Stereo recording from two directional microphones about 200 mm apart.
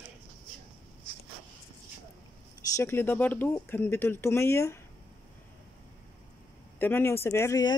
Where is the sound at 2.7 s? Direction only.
10° left (ahead or behind).